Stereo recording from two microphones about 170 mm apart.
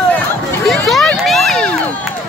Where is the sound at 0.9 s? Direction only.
Centre (ahead or behind).